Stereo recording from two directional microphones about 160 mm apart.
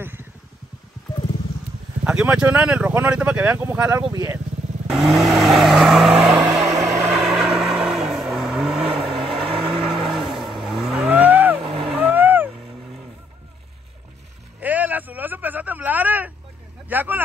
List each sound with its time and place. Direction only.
0.0 s vehicle: 15° right (ahead or behind)
2.0 s speech: 5° right (ahead or behind); by 4.4 s 20° right (ahead or behind)
4.8 s vehicle: centre (ahead or behind)
11.6 s vehicle: 35° right (ahead or behind)
11.9 s vehicle: 10° right (ahead or behind)
14.6 s a sound: 10° right (ahead or behind)
16.9 s vehicle: 10° right (ahead or behind)